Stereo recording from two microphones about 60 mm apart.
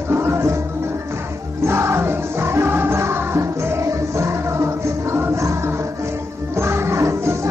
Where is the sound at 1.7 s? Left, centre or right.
Right.